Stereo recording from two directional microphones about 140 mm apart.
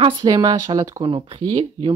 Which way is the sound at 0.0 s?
30° right (ahead or behind).